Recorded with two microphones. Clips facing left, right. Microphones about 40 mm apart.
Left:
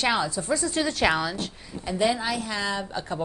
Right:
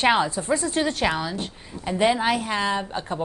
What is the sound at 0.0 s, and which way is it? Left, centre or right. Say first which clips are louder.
A woman's voice: right 4 dB; right.